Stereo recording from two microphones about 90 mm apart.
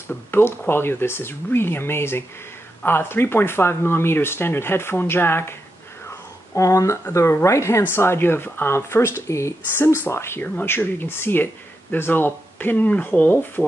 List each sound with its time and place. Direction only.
0.1 s speech: 25° left (ahead or behind)
6.0 s a sound: 35° left (ahead or behind)
7.2 s speech: 30° left (ahead or behind)